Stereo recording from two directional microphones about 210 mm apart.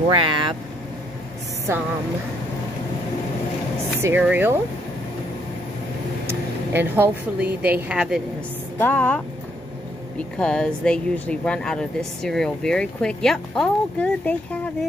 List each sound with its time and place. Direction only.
0.1 s speech: 25° right (ahead or behind)
4.0 s speech: 10° right (ahead or behind)
6.2 s a woman's voice: 10° right (ahead or behind)
8.7 s a woman's voice: 10° left (ahead or behind)